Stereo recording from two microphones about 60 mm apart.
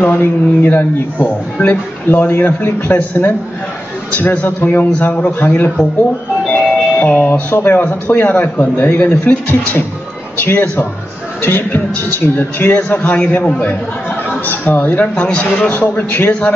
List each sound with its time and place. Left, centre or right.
0.0 s a man's voice: left
5.4 s a man's voice: left
6.5 s music: left
7.5 s a man's voice: left
14.4 s a man's voice: left
15.2 s a man's voice: centre
15.7 s a man's voice: left